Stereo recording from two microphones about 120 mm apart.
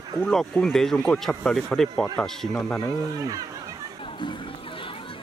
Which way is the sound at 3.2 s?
30° right (ahead or behind).